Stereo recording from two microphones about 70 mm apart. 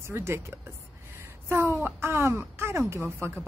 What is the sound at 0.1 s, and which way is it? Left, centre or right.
Speech, right.